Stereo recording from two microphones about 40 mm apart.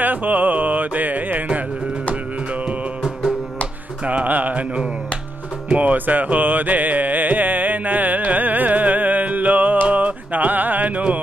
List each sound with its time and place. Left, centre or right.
0.0 s music: right
4.0 s speech: right
4.3 s music: right